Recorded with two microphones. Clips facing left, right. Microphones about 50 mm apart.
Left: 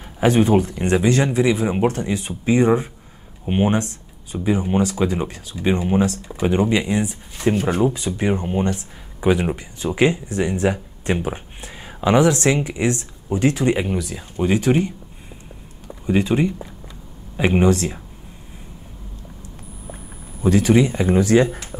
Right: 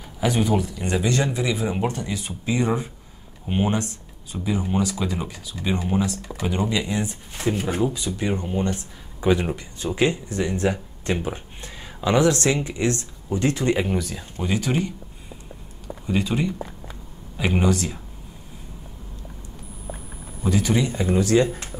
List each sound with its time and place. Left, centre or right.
0.2 s speech: left
1.0 s speech: left
1.9 s speech: left
13.7 s speech: centre
16.1 s speech: left
20.6 s speech: left